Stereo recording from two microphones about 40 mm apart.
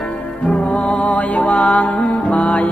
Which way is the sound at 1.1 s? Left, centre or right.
Left.